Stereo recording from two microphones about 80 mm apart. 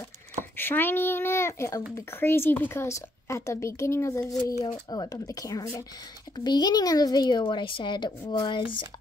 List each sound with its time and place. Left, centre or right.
0.6 s a woman's voice: left
4.5 s speech: left
6.3 s speech: left